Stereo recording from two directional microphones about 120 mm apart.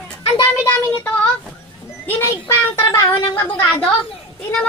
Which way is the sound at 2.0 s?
20° left (ahead or behind).